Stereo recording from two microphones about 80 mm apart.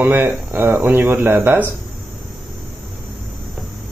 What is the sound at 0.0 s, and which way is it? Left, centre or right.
Speech, right.